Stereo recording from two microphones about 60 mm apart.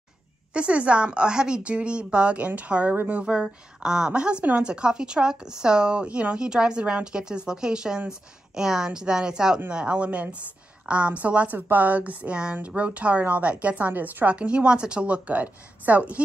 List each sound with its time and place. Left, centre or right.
0.5 s a woman's voice: centre
14.3 s a woman's voice: centre